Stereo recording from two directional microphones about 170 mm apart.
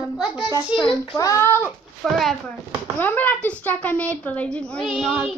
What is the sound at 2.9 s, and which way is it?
A child's voice, 10° left (ahead or behind).